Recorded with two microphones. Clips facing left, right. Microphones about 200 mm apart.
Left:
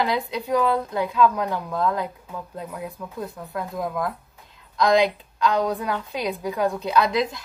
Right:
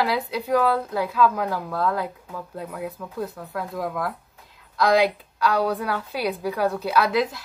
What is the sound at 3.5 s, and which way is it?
Speech, 20° left (ahead or behind).